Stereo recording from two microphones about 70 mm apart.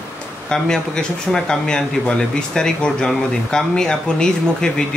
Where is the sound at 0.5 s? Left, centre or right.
Centre.